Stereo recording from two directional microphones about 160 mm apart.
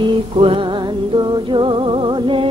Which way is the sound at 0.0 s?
35° right (ahead or behind).